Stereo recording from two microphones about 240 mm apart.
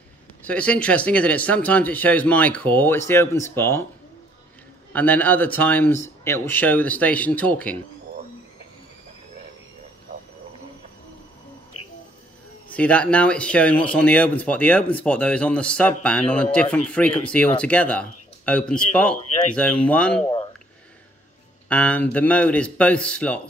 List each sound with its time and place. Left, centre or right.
0.4 s speech: centre
4.9 s speech: centre
12.6 s speech: centre
21.6 s speech: centre